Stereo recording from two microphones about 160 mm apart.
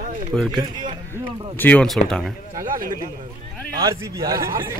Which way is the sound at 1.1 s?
10° left (ahead or behind).